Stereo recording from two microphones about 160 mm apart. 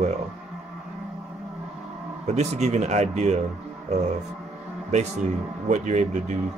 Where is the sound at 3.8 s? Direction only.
45° right (ahead or behind).